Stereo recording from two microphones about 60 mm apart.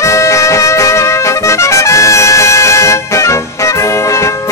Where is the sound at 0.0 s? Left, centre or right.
Left.